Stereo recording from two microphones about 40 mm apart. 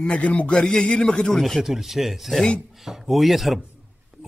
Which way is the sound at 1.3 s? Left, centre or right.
Centre.